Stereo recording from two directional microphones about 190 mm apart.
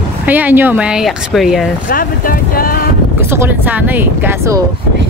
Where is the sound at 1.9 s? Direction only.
50° left (ahead or behind).